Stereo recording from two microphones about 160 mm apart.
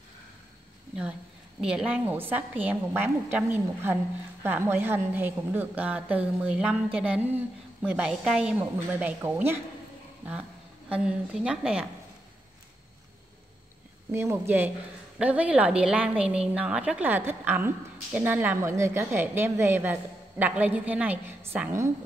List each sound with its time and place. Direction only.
1.6 s a woman's voice: 5° right (ahead or behind)
10.9 s a woman's voice: 5° right (ahead or behind)
14.1 s a woman's voice: 15° right (ahead or behind)